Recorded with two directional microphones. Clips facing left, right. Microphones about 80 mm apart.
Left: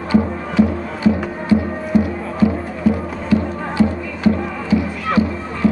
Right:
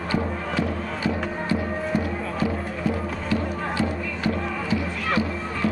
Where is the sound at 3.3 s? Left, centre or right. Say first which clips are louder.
Left 8 dB; left.